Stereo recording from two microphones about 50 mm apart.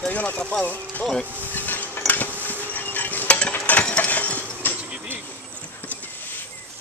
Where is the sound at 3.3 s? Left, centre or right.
Left.